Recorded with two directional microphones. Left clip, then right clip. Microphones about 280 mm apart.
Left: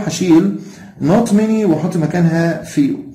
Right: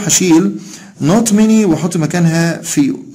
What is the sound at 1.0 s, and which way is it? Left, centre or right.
Speech, right.